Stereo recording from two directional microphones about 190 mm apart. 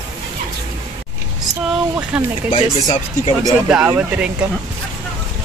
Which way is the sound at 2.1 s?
5° right (ahead or behind).